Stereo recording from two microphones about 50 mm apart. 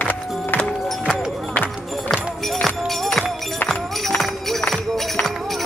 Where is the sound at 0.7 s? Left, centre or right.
Centre.